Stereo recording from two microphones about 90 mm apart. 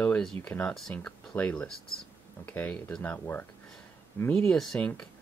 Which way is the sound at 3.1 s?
20° left (ahead or behind).